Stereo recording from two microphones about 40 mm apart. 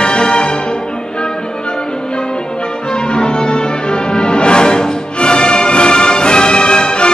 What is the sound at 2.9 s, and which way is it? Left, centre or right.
Music, left.